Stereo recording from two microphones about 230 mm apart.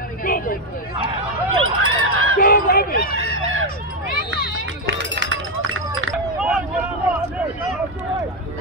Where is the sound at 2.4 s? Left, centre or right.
Left.